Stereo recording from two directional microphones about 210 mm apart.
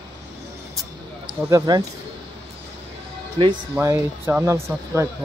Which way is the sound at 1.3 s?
15° right (ahead or behind).